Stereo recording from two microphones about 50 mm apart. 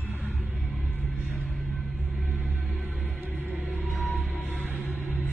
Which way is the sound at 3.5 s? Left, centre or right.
Right.